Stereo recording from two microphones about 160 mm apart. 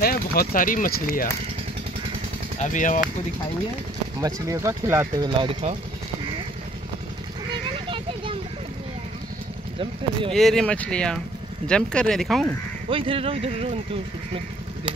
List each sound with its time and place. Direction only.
0.0 s speech: 70° left (ahead or behind)
2.6 s speech: 50° left (ahead or behind)
4.2 s speech: 20° right (ahead or behind)
7.7 s children playing: 35° right (ahead or behind)
10.3 s speech: centre (ahead or behind)
12.9 s speech: 35° right (ahead or behind)